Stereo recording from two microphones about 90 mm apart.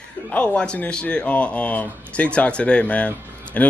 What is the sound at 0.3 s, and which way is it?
Speech, 10° left (ahead or behind).